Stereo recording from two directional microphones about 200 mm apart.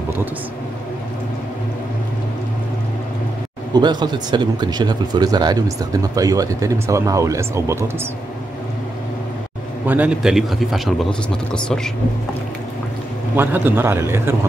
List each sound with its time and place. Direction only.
3.7 s speech: 20° right (ahead or behind)
9.8 s a man's voice: 5° right (ahead or behind)
13.4 s speech: 10° right (ahead or behind)